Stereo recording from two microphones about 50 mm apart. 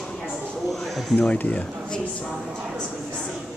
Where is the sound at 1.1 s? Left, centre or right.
Left.